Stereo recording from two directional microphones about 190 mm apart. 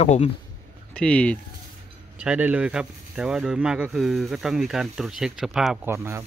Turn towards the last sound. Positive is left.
turn(degrees=-15)  # may be behind; listen again after turning